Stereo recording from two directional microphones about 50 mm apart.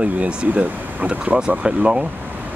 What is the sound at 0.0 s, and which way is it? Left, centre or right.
Speech, right.